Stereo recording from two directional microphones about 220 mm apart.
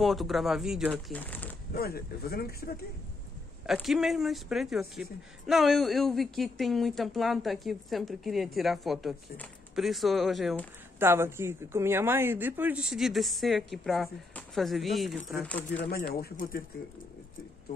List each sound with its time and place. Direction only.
0.0 s a woman's voice: centre (ahead or behind)
1.7 s speech: 45° left (ahead or behind)
3.6 s a woman's voice: centre (ahead or behind)
11.0 s a woman's voice: 10° right (ahead or behind); by 15.8 s 5° left (ahead or behind)
15.8 s speech: 45° left (ahead or behind)